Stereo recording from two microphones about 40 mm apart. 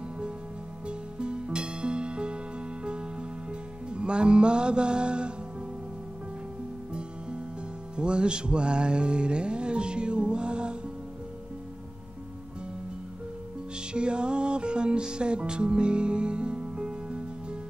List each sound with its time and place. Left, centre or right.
0.8 s music: right
6.9 s music: right
13.7 s music: right